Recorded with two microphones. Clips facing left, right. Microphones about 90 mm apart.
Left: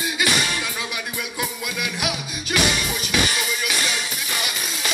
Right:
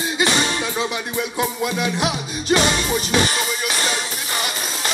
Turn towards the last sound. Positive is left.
turn(degrees=-35)  # may be behind; listen again after turning